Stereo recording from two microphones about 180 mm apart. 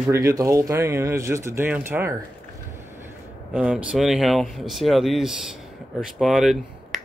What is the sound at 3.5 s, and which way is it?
Speech, 5° right (ahead or behind).